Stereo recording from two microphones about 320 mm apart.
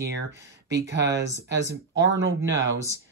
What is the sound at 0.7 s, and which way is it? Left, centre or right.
Speech, right.